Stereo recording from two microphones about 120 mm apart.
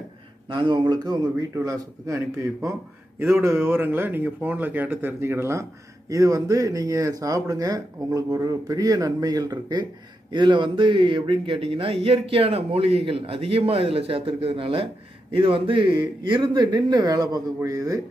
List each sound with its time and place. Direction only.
0.5 s speech: 45° right (ahead or behind); by 18.0 s 25° right (ahead or behind)